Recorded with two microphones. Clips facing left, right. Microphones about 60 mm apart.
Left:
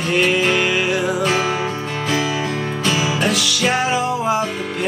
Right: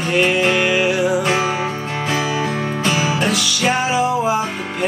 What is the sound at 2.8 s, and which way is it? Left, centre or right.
Music, right.